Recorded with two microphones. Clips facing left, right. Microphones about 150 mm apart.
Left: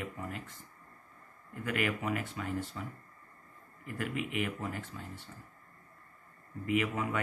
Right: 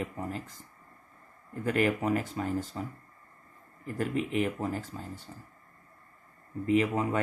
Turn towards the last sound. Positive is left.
turn(degrees=-30)  # may be behind; listen again after turning